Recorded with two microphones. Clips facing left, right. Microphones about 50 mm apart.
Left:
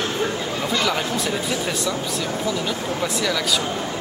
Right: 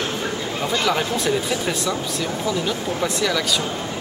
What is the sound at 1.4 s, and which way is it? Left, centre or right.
Speech, centre.